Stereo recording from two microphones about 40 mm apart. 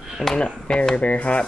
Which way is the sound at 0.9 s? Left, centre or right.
Left.